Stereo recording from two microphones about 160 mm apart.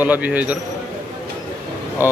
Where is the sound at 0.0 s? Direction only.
10° right (ahead or behind).